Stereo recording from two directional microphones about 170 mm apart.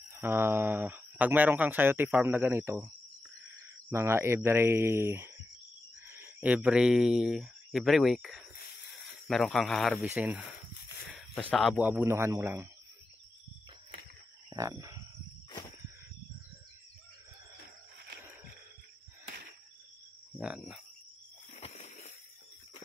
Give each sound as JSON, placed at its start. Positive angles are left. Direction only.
{"t": 0.1, "sound": "speech", "side_deg": -15}
{"t": 3.9, "sound": "speech", "side_deg": -15}
{"t": 11.1, "sound": "zipper", "side_deg": 0}
{"t": 11.5, "sound": "speech", "side_deg": 0}
{"t": 11.8, "sound": "speech", "side_deg": -15}
{"t": 14.5, "sound": "cricket", "side_deg": -20}
{"t": 20.3, "sound": "speech", "side_deg": -5}
{"t": 21.5, "sound": "a sound", "side_deg": 40}